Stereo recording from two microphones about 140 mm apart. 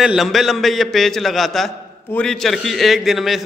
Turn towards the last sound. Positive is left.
turn(degrees=0)  # may be behind; listen again after turning